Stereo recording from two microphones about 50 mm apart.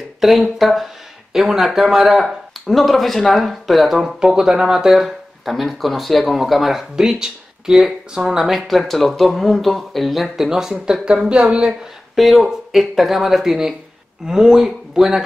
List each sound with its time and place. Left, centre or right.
0.2 s speech: centre
12.2 s speech: centre